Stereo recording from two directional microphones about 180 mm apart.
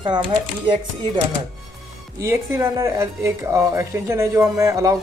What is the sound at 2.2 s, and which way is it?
A woman's voice, 15° right (ahead or behind).